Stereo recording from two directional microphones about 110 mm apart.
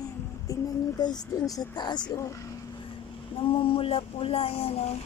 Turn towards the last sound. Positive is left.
turn(degrees=65)  # may be behind; listen again after turning